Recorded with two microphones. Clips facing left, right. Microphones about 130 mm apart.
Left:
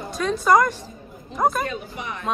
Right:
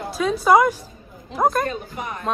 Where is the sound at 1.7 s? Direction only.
45° right (ahead or behind).